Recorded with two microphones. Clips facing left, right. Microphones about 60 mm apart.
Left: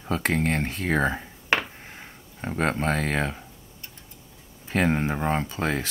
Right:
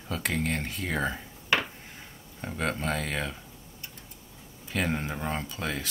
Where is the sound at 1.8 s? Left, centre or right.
Left.